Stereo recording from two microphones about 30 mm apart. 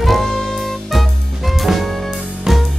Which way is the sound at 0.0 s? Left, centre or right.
Centre.